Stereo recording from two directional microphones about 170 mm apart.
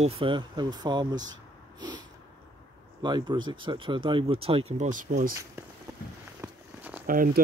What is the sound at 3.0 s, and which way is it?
Speech, 25° right (ahead or behind).